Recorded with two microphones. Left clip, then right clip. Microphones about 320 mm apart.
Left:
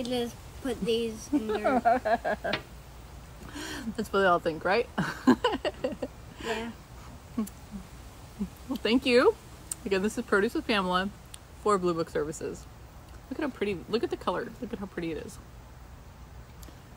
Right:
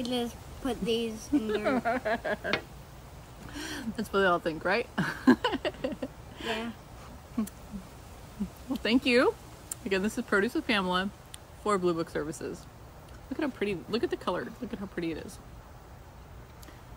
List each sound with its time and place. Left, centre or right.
0.0 s speech: centre
1.5 s speech: centre
3.5 s speech: centre
8.8 s speech: centre